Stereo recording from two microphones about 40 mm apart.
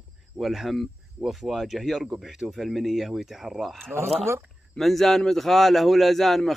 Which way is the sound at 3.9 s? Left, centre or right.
Right.